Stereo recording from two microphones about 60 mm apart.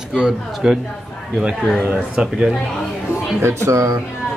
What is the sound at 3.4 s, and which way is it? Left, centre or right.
Speech, right.